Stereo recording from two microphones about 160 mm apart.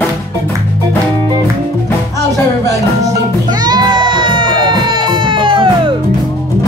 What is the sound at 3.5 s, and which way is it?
Music, 25° right (ahead or behind).